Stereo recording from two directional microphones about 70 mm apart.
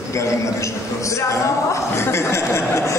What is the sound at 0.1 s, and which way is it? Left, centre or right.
A man's voice, left.